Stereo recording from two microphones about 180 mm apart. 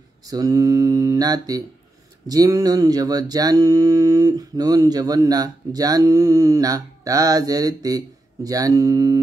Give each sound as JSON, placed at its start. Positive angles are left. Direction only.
{"t": 0.3, "sound": "speech", "side_deg": -20}